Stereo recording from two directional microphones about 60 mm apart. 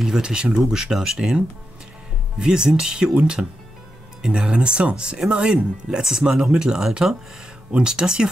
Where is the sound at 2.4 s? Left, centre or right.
Centre.